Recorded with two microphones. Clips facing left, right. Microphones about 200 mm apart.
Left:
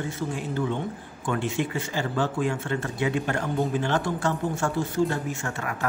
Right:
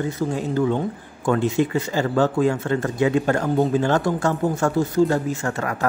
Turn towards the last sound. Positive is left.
turn(degrees=-40)  # may be behind; listen again after turning